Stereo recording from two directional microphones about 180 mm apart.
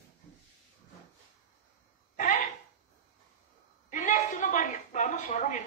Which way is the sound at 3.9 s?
40° left (ahead or behind).